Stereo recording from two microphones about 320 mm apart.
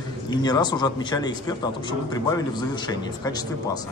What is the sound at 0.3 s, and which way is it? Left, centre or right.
Speech, centre.